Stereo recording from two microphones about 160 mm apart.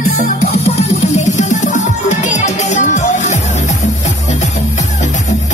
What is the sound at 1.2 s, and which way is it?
Music, 50° left (ahead or behind).